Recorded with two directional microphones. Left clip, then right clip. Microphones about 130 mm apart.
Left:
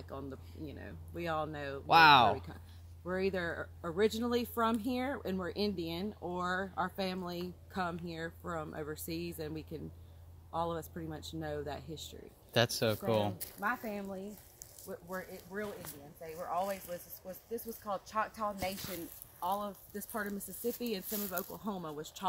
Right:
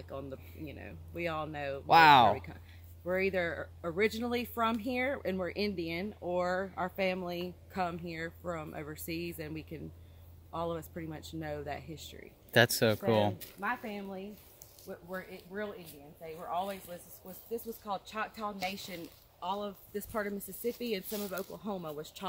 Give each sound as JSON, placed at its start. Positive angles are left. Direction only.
{"t": 0.1, "sound": "speech", "side_deg": 0}
{"t": 1.9, "sound": "speech", "side_deg": -50}
{"t": 3.1, "sound": "speech", "side_deg": 5}
{"t": 12.5, "sound": "speech", "side_deg": -85}
{"t": 13.6, "sound": "speech", "side_deg": 45}
{"t": 17.8, "sound": "speech", "side_deg": 0}